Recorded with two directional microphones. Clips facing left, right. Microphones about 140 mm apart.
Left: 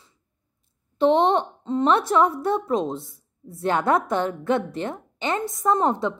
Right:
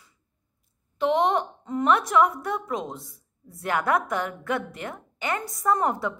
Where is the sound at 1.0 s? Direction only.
30° left (ahead or behind).